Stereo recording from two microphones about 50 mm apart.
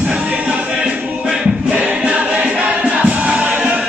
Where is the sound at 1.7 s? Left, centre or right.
Right.